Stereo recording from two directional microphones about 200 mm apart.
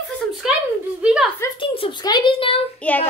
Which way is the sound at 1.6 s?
25° left (ahead or behind).